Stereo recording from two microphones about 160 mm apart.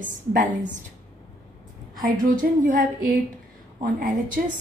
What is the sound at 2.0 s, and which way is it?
A woman's voice, 55° right (ahead or behind).